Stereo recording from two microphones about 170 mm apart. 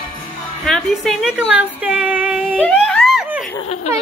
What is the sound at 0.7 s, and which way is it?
A woman's voice, centre (ahead or behind).